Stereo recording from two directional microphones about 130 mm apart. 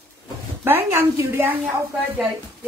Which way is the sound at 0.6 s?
20° right (ahead or behind).